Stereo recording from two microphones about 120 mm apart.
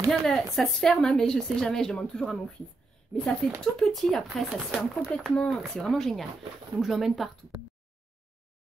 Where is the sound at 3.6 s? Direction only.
Centre (ahead or behind).